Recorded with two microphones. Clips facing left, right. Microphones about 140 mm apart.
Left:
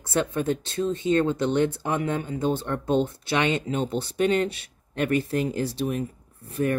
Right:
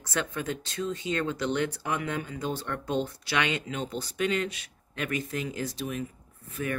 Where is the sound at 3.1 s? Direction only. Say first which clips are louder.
Left 5 dB; 25° left (ahead or behind).